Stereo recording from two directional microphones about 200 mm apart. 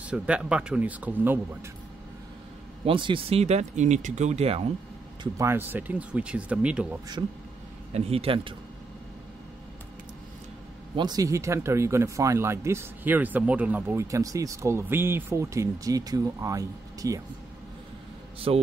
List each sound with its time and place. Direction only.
0.0 s speech: 5° right (ahead or behind)
2.8 s speech: 25° right (ahead or behind)
5.2 s speech: 15° right (ahead or behind)
7.9 s a man's voice: 30° right (ahead or behind)
11.0 s speech: 20° right (ahead or behind)
18.5 s a man's voice: 30° right (ahead or behind)